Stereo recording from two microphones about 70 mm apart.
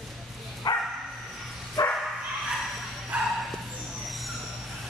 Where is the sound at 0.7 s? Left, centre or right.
Left.